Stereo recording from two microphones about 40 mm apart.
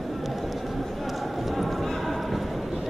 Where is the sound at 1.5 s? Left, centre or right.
Centre.